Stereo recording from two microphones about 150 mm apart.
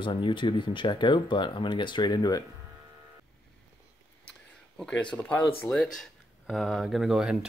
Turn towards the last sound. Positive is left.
turn(degrees=-5)  # may be behind; listen again after turning